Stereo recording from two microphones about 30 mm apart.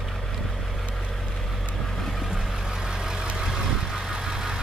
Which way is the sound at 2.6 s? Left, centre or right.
Right.